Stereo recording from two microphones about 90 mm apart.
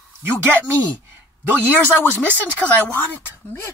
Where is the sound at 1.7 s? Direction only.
20° left (ahead or behind).